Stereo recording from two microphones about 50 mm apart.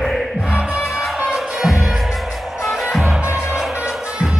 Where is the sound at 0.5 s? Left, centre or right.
Centre.